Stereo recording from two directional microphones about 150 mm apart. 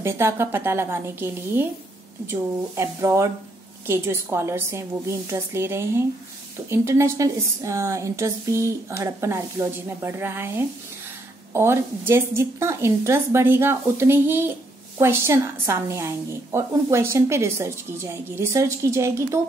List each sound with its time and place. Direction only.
0.0 s a woman's voice: 15° right (ahead or behind)
2.7 s a woman's voice: 20° right (ahead or behind)